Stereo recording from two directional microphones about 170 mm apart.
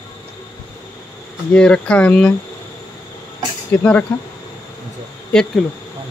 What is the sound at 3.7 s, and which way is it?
Speech, 10° left (ahead or behind).